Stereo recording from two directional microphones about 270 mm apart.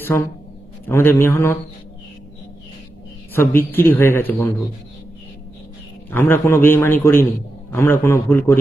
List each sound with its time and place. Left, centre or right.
0.8 s a man's voice: centre
3.3 s a man's voice: centre
6.0 s a man's voice: centre